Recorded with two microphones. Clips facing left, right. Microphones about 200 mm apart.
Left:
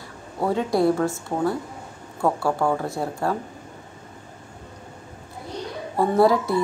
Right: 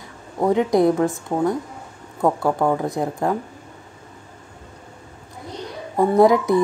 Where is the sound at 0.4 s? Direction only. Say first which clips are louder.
Right 4 dB; 20° right (ahead or behind).